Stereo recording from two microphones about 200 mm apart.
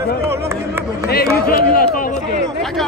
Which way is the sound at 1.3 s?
45° left (ahead or behind).